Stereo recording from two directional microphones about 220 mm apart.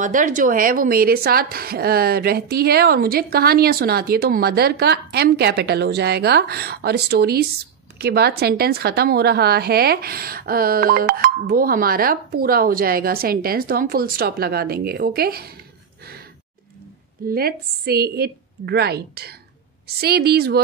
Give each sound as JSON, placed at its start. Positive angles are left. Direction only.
{"t": 0.0, "sound": "a woman's voice", "side_deg": -35}
{"t": 17.3, "sound": "a woman's voice", "side_deg": -45}